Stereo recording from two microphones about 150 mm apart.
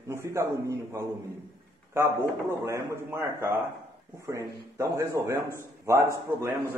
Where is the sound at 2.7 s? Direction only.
20° right (ahead or behind).